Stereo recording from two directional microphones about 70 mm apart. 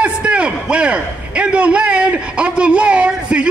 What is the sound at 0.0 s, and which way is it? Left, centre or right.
A man's voice, centre.